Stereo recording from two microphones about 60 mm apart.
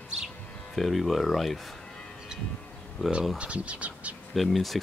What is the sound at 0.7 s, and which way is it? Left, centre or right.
Speech, centre.